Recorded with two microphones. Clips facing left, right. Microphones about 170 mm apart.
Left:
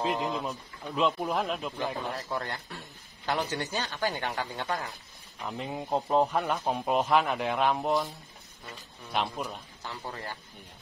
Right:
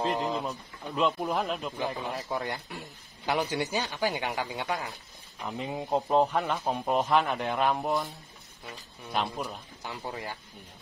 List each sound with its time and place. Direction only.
0.0 s a man's voice: centre (ahead or behind)
2.2 s speech: 15° right (ahead or behind)
5.4 s a man's voice: centre (ahead or behind)
9.8 s speech: 15° right (ahead or behind)